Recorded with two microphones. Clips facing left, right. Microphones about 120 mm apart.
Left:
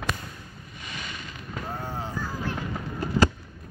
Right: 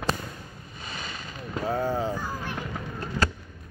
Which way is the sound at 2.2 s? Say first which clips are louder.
Left 1 dB; 15° right (ahead or behind).